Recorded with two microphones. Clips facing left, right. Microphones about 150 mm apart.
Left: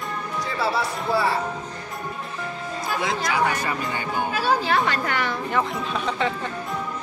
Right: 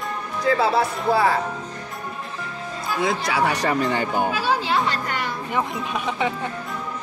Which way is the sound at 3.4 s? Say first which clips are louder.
Right 3 dB; 75° right (ahead or behind).